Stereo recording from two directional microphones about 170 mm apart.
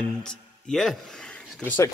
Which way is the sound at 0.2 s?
5° left (ahead or behind).